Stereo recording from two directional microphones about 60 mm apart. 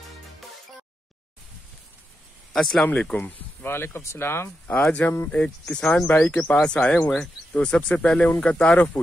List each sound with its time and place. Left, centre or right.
2.5 s speech: centre
2.9 s speech: left
3.6 s speech: left
4.6 s speech: left
5.3 s speech: left